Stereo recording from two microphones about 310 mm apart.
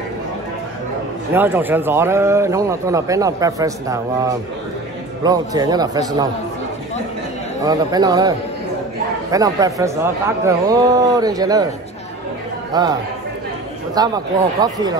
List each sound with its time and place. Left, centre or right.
1.3 s a man's voice: centre
7.6 s a man's voice: centre
12.7 s a man's voice: centre
13.9 s a man's voice: centre